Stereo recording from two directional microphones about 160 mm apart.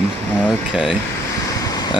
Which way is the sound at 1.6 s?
25° left (ahead or behind).